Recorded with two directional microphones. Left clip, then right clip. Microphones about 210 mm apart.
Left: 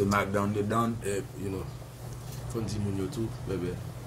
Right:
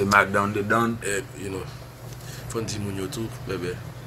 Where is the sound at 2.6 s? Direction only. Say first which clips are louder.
Right 3 dB; 10° left (ahead or behind).